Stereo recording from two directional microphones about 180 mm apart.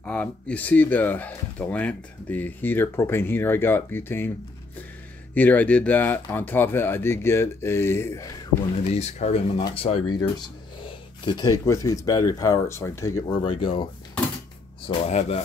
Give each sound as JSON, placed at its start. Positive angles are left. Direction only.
{"t": 0.0, "sound": "speech", "side_deg": 5}
{"t": 5.3, "sound": "speech", "side_deg": 10}
{"t": 8.9, "sound": "speech", "side_deg": 40}
{"t": 11.2, "sound": "speech", "side_deg": 20}
{"t": 13.4, "sound": "speech", "side_deg": 30}
{"t": 14.9, "sound": "speech", "side_deg": 35}